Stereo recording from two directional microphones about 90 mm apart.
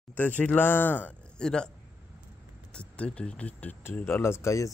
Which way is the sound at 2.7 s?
10° left (ahead or behind).